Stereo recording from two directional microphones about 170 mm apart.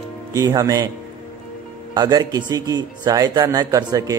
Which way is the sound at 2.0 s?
25° right (ahead or behind).